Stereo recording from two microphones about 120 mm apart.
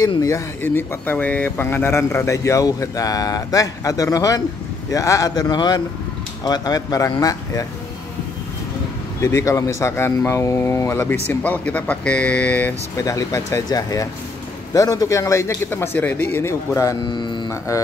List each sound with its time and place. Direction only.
0.0 s a man's voice: 30° left (ahead or behind)
0.6 s a man's voice: 15° left (ahead or behind)
9.2 s a man's voice: 25° left (ahead or behind)
13.0 s a man's voice: 25° left (ahead or behind)
17.0 s speech: 40° left (ahead or behind)
17.5 s a man's voice: 25° left (ahead or behind)